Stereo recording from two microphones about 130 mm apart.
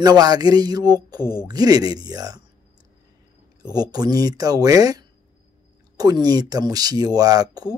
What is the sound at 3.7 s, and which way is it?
Speech, 30° right (ahead or behind).